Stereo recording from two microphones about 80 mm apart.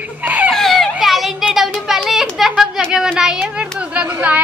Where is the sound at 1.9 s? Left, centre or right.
Centre.